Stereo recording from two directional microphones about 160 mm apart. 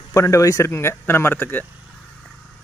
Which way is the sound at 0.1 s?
20° left (ahead or behind).